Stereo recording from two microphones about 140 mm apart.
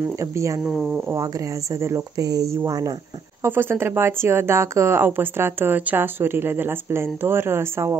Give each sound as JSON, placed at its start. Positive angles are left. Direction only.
{"t": 0.1, "sound": "speech", "side_deg": -20}
{"t": 0.7, "sound": "speech", "side_deg": -5}
{"t": 1.1, "sound": "speech", "side_deg": -25}
{"t": 3.4, "sound": "speech", "side_deg": -15}